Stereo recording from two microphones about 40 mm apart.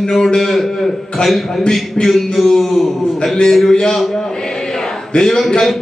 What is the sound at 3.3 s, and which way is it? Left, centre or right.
A man's voice, centre.